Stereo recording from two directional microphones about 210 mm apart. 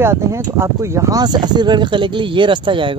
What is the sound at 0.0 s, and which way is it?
Speech, 10° right (ahead or behind).